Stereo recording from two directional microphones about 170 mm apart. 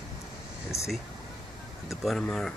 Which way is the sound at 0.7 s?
15° left (ahead or behind).